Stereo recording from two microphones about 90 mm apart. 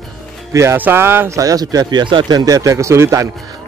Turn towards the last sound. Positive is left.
turn(degrees=-35)  # may be behind; listen again after turning